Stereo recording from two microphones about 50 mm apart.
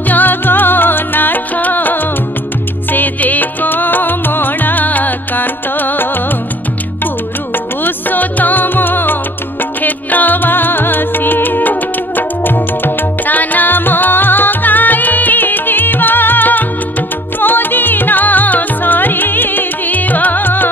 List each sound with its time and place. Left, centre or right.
0.1 s music: left
7.8 s music: left